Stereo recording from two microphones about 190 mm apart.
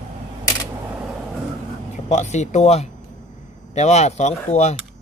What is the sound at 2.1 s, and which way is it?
Speech, 35° left (ahead or behind).